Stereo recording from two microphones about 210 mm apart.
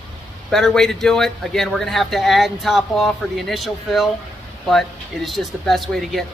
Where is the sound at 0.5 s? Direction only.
Centre (ahead or behind).